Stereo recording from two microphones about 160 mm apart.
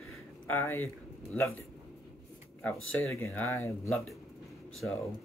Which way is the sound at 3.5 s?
20° left (ahead or behind).